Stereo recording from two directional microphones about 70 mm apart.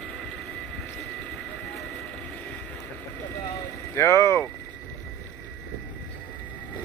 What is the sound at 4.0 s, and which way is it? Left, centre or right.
Vehicle, left.